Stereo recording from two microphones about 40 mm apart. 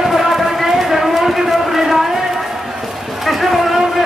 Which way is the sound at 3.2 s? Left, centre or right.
Centre.